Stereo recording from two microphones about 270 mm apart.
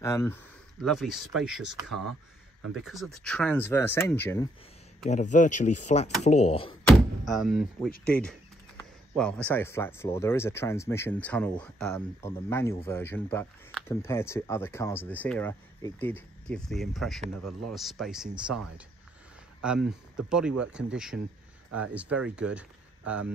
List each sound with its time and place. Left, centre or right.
0.0 s speech: centre
0.8 s speech: centre
5.0 s speech: left
7.2 s speech: centre
9.1 s speech: centre
17.4 s speech: right
17.7 s speech: centre
19.6 s speech: centre
21.6 s speech: right
21.9 s speech: centre